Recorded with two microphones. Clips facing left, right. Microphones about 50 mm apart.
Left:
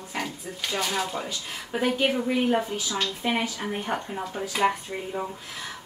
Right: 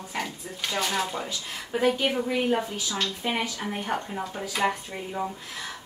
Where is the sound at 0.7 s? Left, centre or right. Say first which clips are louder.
Even; centre.